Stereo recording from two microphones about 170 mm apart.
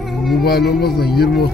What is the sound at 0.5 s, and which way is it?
Speech, 70° left (ahead or behind).